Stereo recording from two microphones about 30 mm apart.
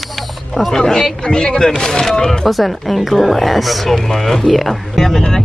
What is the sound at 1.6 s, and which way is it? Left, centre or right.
Speech, centre.